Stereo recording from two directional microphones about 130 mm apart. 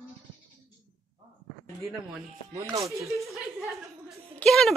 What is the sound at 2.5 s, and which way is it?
Speech, 25° right (ahead or behind).